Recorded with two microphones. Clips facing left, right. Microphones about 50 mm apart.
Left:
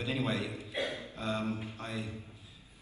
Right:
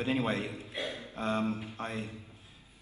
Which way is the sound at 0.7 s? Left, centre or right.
Left.